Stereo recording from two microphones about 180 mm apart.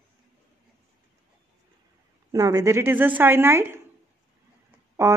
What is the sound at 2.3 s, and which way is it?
A woman's voice, 20° right (ahead or behind).